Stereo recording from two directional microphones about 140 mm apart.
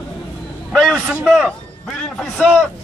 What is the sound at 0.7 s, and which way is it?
A man's voice, 5° left (ahead or behind).